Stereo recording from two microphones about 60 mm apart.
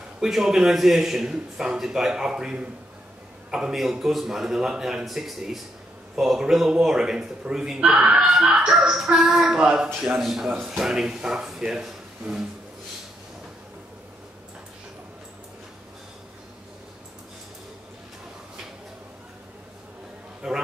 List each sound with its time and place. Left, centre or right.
0.2 s a man's voice: centre
8.3 s a man's voice: centre
20.4 s a sound: centre